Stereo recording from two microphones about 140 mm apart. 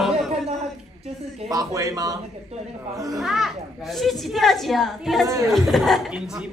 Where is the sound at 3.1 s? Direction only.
Centre (ahead or behind).